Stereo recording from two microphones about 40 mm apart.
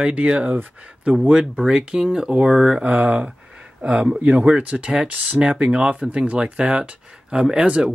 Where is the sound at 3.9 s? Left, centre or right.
Centre.